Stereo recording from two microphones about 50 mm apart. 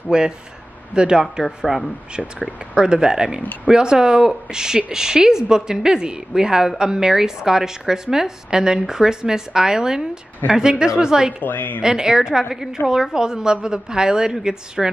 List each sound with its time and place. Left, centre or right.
0.1 s a woman's voice: centre
11.4 s a woman's voice: left
11.8 s a woman's voice: centre